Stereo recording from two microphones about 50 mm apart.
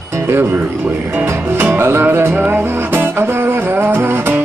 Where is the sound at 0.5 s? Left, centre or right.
Right.